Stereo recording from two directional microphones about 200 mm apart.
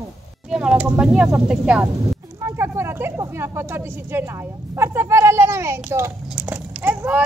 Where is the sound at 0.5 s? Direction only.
5° right (ahead or behind).